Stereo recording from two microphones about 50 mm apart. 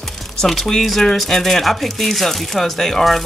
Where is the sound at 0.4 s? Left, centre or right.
Centre.